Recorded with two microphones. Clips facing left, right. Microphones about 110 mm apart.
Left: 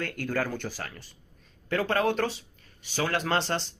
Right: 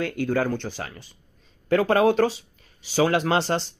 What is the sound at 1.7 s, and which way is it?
Speech, 40° right (ahead or behind).